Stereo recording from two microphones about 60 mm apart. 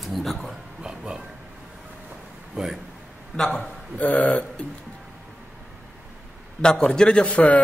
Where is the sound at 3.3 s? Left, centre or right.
Centre.